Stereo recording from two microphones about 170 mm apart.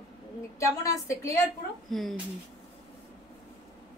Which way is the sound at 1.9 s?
Centre (ahead or behind).